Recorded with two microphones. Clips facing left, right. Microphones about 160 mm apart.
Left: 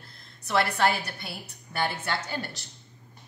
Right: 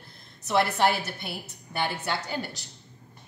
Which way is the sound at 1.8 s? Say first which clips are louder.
Even; 15° right (ahead or behind).